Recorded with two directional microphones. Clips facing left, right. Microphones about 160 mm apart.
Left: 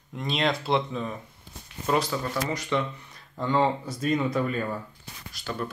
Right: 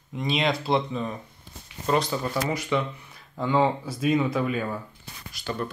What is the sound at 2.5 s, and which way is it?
Speech, 5° right (ahead or behind).